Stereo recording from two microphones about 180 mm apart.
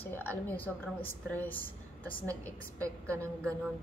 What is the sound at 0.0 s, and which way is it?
A woman's voice, 10° left (ahead or behind).